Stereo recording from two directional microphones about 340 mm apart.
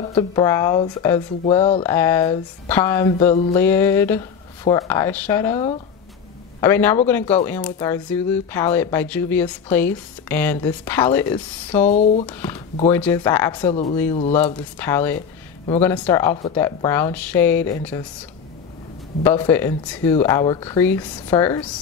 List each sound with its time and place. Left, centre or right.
0.0 s speech: centre
1.8 s speech: centre
3.5 s speech: centre
11.9 s speech: centre
12.3 s speech: centre
19.2 s speech: centre